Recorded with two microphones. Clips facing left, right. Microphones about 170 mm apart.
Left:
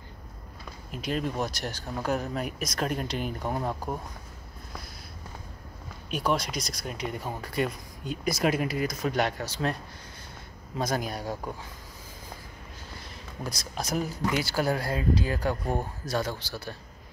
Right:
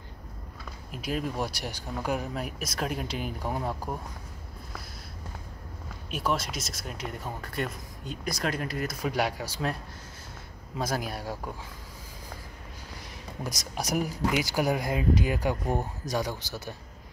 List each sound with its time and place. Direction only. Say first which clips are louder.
0.9 s speech: left 1 dB; 5° right (ahead or behind)
6.0 s speech: left 2 dB; centre (ahead or behind)
10.8 s speech: left 2 dB; 5° right (ahead or behind)
13.4 s speech: even; 15° right (ahead or behind)